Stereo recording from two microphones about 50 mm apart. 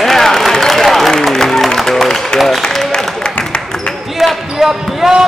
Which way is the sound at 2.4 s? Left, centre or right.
Centre.